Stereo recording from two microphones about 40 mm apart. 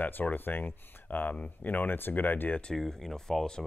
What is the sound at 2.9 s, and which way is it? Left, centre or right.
Speech, centre.